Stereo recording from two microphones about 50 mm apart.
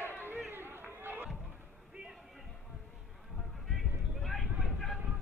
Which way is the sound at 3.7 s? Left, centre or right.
Centre.